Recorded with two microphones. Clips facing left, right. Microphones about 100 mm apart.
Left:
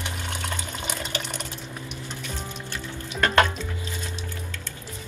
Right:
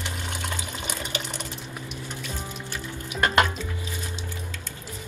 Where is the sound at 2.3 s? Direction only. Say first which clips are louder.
Even; 10° right (ahead or behind).